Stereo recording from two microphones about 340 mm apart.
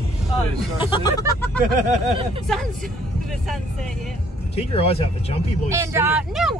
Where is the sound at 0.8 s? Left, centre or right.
Centre.